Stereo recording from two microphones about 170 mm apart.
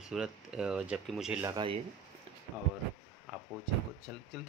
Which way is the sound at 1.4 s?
25° right (ahead or behind).